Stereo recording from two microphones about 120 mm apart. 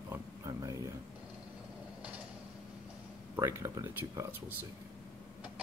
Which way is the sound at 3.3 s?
25° right (ahead or behind).